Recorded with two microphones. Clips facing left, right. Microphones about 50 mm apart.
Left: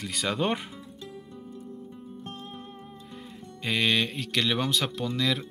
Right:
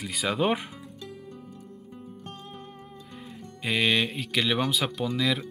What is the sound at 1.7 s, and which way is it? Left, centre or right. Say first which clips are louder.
Music: left 2 dB; right.